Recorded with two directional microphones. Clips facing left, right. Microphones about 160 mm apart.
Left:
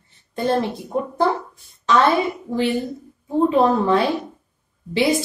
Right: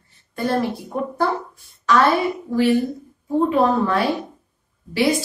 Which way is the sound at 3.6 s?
25° left (ahead or behind).